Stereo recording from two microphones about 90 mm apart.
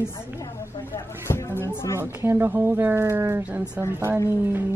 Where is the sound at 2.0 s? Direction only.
30° right (ahead or behind).